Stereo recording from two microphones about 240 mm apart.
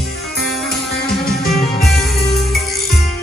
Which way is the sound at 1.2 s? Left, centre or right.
Left.